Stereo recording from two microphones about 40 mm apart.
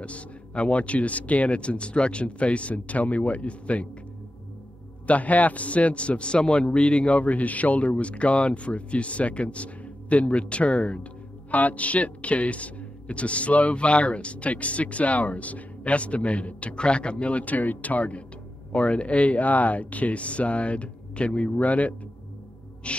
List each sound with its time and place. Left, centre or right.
0.0 s a man's voice: left
5.0 s a man's voice: left
22.8 s music: left